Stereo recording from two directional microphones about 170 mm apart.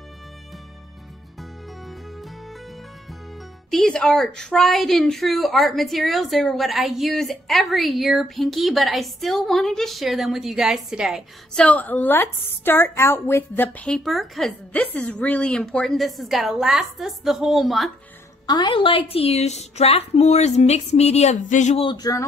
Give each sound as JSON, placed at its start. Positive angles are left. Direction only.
{"t": 3.7, "sound": "speech", "side_deg": 5}
{"t": 11.6, "sound": "speech", "side_deg": 10}
{"t": 18.5, "sound": "a woman's voice", "side_deg": 30}
{"t": 21.8, "sound": "speech", "side_deg": 20}